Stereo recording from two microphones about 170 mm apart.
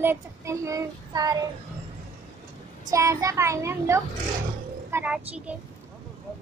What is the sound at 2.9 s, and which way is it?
A child's voice, 20° right (ahead or behind).